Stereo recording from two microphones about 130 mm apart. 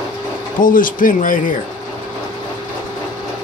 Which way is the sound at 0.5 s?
90° left.